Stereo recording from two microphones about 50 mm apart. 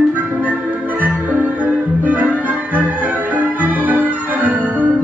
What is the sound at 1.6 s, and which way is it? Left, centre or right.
Music, right.